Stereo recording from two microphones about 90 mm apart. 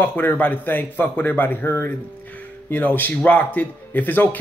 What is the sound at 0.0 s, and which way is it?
Speech, 20° left (ahead or behind).